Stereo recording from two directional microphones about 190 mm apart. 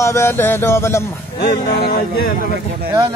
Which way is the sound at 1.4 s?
55° left (ahead or behind).